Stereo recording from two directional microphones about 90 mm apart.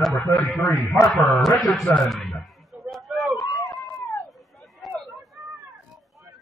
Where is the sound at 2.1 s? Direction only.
5° left (ahead or behind).